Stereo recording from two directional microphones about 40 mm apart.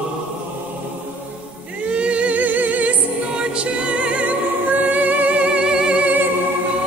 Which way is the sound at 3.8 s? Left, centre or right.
Right.